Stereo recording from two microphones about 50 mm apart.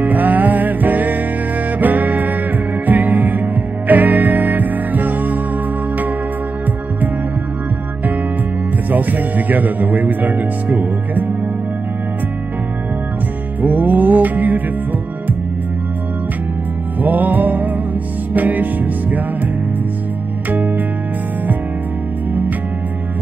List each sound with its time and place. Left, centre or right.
0.0 s music: right
8.9 s speech: right
13.6 s music: right
17.0 s music: right